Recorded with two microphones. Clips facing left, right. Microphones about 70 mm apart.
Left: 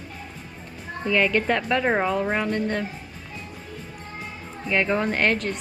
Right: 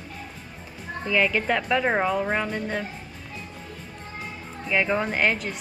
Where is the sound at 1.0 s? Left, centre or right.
Centre.